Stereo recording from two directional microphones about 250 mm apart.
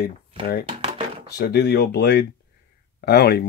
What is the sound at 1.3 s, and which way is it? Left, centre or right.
Speech, left.